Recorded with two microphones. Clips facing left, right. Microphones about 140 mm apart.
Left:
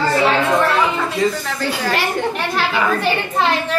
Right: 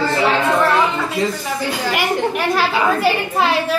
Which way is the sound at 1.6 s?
10° right (ahead or behind).